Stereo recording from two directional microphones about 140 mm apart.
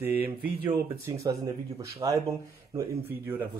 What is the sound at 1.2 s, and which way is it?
Speech, 25° right (ahead or behind).